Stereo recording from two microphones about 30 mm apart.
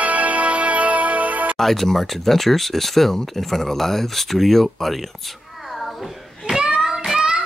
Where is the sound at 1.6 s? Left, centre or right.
Centre.